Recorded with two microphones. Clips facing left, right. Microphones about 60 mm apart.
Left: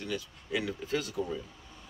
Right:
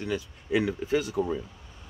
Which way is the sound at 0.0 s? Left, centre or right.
Right.